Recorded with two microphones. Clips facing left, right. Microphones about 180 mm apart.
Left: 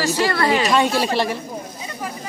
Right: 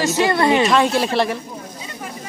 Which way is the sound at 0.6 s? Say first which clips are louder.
Right 1 dB; centre (ahead or behind).